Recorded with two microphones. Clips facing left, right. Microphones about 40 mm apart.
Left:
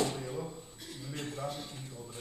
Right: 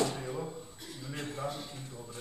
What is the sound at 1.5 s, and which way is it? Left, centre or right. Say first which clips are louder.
Speech: right 1 dB; centre.